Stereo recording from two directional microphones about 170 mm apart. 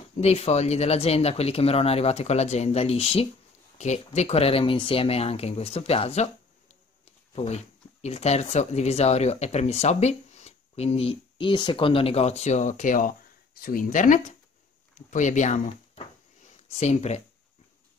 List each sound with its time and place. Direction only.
0.2 s speech: 40° left (ahead or behind)
7.3 s speech: 40° left (ahead or behind)